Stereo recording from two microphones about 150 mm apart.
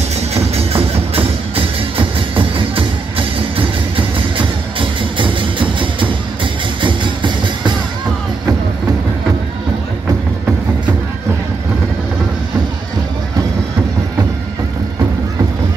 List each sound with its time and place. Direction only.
0.3 s music: 45° right (ahead or behind)